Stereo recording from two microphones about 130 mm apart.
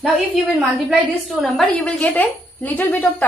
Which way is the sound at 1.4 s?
10° left (ahead or behind).